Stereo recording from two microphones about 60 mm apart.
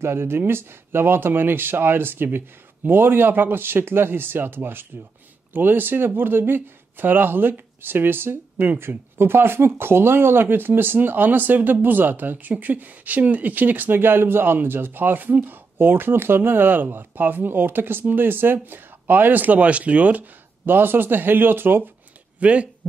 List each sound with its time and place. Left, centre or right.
0.0 s speech: right
22.4 s speech: right